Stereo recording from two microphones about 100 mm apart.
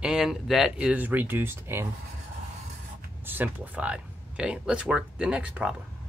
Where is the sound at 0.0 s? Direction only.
5° right (ahead or behind); by 1.9 s 25° right (ahead or behind).